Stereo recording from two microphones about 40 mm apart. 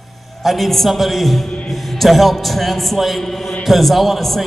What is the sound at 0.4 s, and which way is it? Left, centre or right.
A man's voice, centre.